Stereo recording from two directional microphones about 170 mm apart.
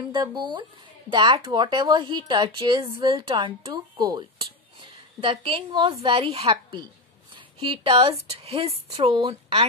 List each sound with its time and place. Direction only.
0.1 s speech: 25° right (ahead or behind)